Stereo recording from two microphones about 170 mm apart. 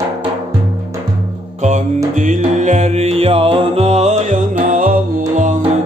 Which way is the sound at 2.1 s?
45° right (ahead or behind).